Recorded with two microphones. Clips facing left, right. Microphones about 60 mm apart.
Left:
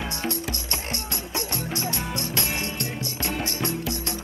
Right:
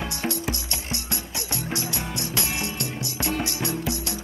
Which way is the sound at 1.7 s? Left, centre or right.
Left.